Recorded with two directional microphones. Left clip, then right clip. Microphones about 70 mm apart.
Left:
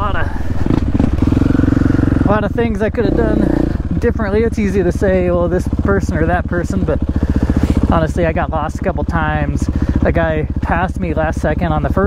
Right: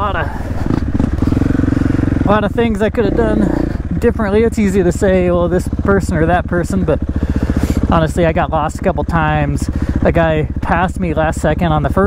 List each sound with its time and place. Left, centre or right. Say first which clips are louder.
0.7 s vehicle: left 2 dB; right
1.2 s vehicle: even; left
1.7 s vehicle: left 1 dB; centre
2.2 s speech: right 5 dB; centre